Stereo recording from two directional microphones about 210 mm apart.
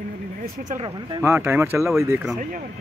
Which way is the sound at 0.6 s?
35° right (ahead or behind).